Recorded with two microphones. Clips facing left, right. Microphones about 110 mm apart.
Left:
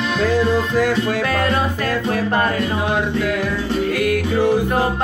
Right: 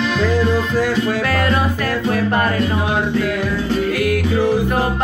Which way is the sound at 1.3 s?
25° left (ahead or behind).